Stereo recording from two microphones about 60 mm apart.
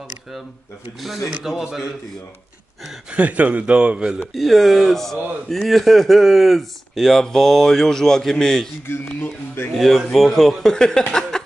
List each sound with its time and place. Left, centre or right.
1.4 s a man's voice: centre
3.1 s speech: right
4.3 s speech: centre
9.0 s speech: left
9.8 s speech: centre
10.7 s speech: centre
11.1 s a sound: centre